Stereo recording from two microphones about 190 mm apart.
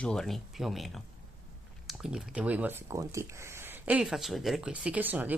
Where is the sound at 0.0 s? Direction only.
5° left (ahead or behind).